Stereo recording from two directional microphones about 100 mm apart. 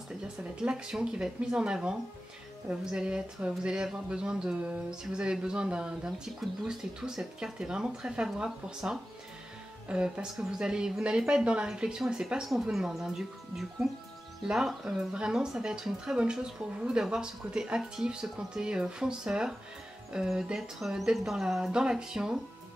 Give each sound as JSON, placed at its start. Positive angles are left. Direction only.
{"t": 0.4, "sound": "speech", "side_deg": -10}